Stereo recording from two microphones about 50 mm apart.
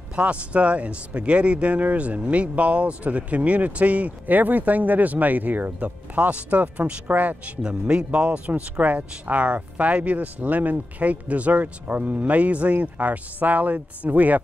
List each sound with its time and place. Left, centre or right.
0.1 s speech: right
7.9 s speech: right